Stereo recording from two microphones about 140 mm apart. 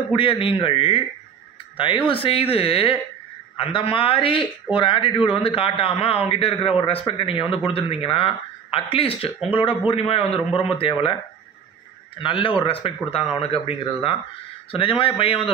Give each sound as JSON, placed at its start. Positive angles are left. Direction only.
{"t": 0.1, "sound": "a man's voice", "side_deg": 40}
{"t": 2.0, "sound": "a man's voice", "side_deg": 40}
{"t": 12.2, "sound": "a man's voice", "side_deg": 35}